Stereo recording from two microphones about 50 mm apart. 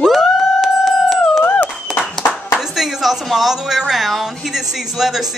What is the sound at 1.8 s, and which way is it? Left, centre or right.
Clapping, centre.